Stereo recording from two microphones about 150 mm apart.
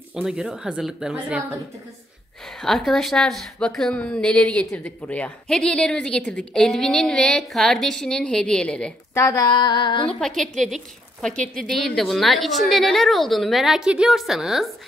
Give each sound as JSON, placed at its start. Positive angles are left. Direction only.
{"t": 0.1, "sound": "a woman's voice", "side_deg": -5}
{"t": 2.6, "sound": "a woman's voice", "side_deg": 0}
{"t": 9.1, "sound": "female singing", "side_deg": 20}
{"t": 10.0, "sound": "a woman's voice", "side_deg": 5}